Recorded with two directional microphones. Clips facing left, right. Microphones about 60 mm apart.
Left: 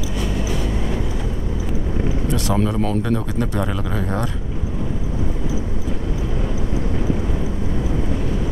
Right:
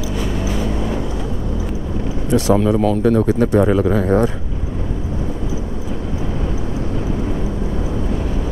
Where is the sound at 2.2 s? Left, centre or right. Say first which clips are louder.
Right 8 dB; right.